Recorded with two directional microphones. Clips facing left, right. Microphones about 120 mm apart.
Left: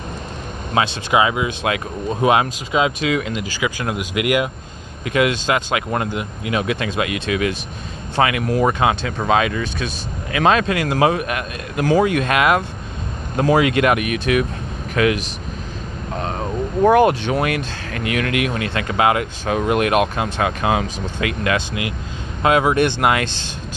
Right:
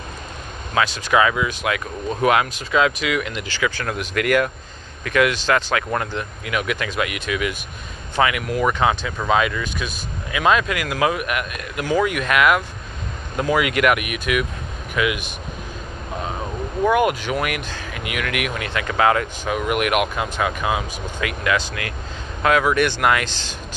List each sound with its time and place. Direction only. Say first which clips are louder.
0.7 s speech: left 1 dB; 20° left (ahead or behind)
3.5 s speech: right 1 dB; 15° left (ahead or behind); by 15.3 s 35° left (ahead or behind)
16.8 s speech: left 5 dB; 35° left (ahead or behind)